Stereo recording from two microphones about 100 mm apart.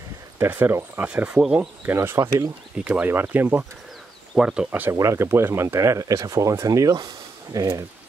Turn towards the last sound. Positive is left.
turn(degrees=-40)  # may be behind; listen again after turning